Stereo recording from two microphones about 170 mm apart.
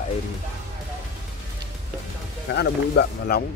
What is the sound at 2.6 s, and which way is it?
Speech, 70° left (ahead or behind).